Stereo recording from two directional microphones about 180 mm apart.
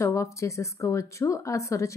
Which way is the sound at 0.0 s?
15° left (ahead or behind).